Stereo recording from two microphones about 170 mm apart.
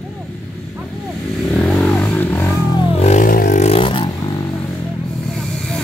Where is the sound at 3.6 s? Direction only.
35° left (ahead or behind).